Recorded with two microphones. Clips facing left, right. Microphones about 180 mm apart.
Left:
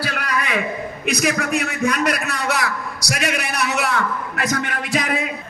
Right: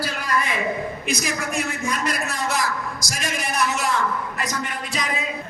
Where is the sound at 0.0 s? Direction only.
65° left (ahead or behind).